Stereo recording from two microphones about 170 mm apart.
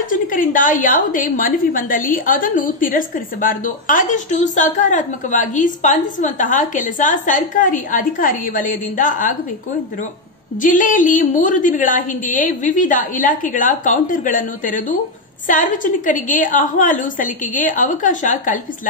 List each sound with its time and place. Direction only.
0.1 s a woman's voice: 55° left (ahead or behind)
10.6 s a woman's voice: 50° left (ahead or behind)